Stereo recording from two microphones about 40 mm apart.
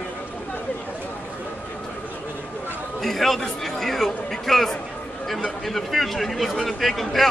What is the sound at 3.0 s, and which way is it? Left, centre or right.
A man's voice, centre.